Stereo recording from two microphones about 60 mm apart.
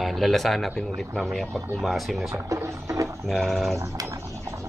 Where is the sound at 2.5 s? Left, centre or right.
Right.